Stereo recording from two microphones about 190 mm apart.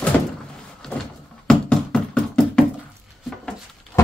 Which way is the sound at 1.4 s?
5° left (ahead or behind).